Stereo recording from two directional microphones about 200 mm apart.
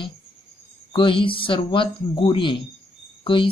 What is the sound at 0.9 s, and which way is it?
Speech, 25° left (ahead or behind).